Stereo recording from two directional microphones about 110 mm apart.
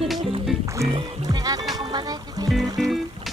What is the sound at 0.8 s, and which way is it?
Music, 75° right (ahead or behind).